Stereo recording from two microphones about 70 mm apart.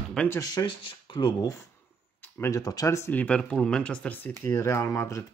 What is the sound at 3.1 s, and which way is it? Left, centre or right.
Speech, left.